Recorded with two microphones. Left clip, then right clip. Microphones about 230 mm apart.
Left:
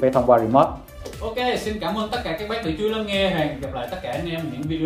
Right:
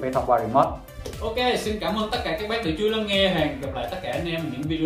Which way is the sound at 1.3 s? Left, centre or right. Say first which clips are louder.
Even; centre.